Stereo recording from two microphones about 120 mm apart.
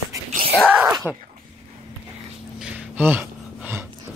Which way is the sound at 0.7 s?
15° right (ahead or behind).